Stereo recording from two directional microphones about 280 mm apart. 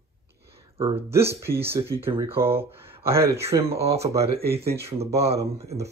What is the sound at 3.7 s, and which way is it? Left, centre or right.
Speech, right.